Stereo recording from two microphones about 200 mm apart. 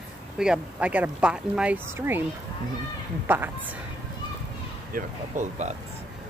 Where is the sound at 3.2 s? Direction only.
10° right (ahead or behind).